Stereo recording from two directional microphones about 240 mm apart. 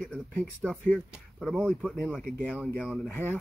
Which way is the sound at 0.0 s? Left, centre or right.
Centre.